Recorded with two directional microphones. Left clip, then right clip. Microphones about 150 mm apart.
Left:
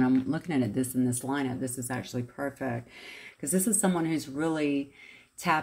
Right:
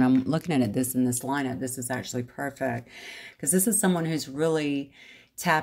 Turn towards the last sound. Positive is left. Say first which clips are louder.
# right 3 dB
turn(degrees=-45)  # may be behind; listen again after turning